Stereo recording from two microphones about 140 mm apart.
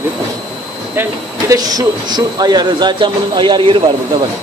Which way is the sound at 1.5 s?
25° right (ahead or behind).